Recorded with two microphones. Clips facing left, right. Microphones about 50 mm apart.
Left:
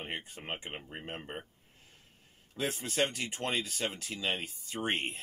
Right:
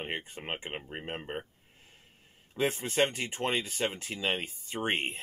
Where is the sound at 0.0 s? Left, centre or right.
Right.